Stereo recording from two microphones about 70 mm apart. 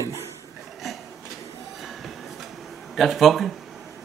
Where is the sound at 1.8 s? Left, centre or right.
Centre.